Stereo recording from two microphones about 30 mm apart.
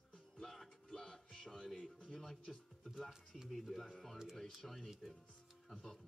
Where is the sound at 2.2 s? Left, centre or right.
Centre.